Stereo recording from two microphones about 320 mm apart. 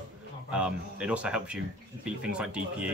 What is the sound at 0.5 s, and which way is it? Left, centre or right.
Speech, centre.